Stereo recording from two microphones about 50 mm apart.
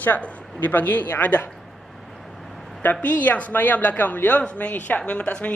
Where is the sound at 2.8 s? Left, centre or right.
Left.